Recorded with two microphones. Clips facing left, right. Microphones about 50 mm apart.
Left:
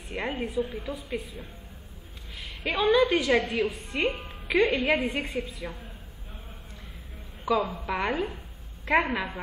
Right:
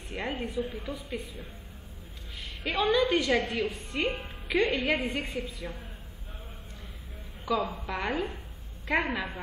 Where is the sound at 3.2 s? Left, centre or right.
Centre.